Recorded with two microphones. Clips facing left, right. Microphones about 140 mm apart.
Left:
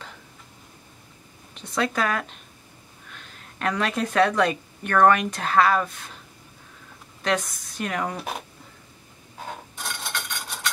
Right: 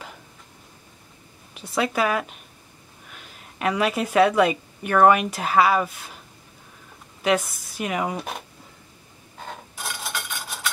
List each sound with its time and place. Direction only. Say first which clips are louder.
1.5 s a woman's voice: right 1 dB; 10° right (ahead or behind)
7.2 s speech: right 3 dB; 5° right (ahead or behind)
9.4 s a sound: even; centre (ahead or behind)